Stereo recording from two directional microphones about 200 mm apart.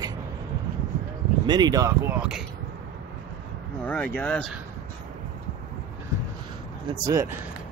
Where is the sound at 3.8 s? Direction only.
10° left (ahead or behind).